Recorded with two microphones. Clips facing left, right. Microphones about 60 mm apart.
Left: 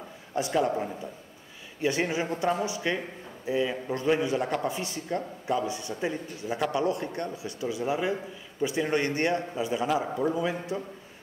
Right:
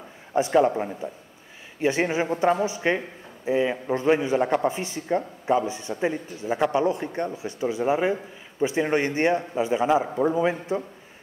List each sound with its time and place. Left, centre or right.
0.3 s a man's voice: right